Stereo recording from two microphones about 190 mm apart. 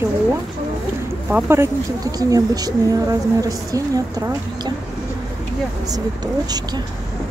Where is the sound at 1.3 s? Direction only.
10° right (ahead or behind).